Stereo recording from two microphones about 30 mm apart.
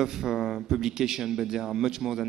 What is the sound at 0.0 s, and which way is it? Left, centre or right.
A man's voice, centre.